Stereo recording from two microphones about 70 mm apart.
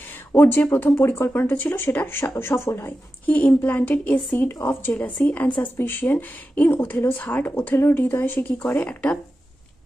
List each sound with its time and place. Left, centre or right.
0.3 s speech: left
3.3 s a woman's voice: left